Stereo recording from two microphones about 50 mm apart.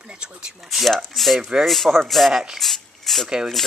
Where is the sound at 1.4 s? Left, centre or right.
Centre.